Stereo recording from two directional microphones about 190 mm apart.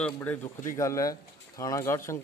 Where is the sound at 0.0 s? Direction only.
10° left (ahead or behind).